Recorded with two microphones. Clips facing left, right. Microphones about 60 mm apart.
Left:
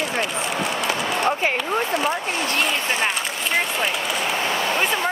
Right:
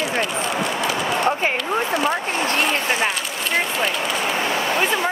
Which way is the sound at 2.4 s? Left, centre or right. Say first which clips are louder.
Right 2 dB; right.